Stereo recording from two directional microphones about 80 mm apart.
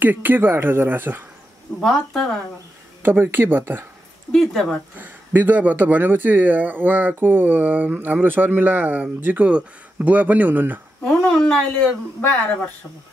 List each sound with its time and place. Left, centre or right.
0.0 s speech: right
1.8 s speech: centre
3.0 s speech: right
4.3 s a woman's voice: centre
4.9 s speech: right
11.1 s a woman's voice: centre
12.2 s speech: centre